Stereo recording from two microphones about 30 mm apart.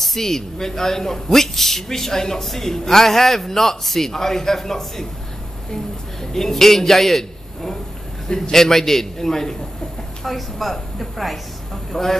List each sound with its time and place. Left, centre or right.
0.0 s a man's voice: centre
6.3 s a man's voice: centre
10.2 s a woman's voice: centre